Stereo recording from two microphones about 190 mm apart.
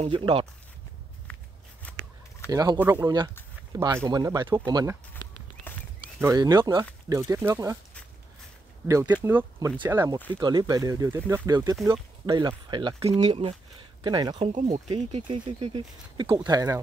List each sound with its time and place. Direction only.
0.0 s speech: 30° right (ahead or behind)
1.8 s shuffling cards: 10° left (ahead or behind)
2.5 s speech: 20° right (ahead or behind)
5.1 s walk: 10° left (ahead or behind)
6.2 s speech: 20° right (ahead or behind)
8.8 s speech: 15° right (ahead or behind)
14.5 s speech: 35° right (ahead or behind); by 16.8 s 20° right (ahead or behind)